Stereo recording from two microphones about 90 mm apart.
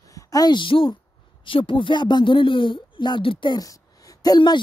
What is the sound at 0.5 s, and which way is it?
Speech, 70° left (ahead or behind).